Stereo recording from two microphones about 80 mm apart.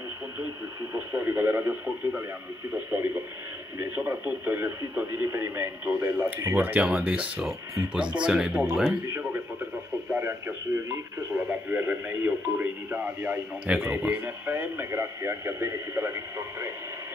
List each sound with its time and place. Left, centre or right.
0.9 s speech: right
6.9 s speech: centre
9.0 s speech: right
11.3 s speech: centre; by 16.7 s right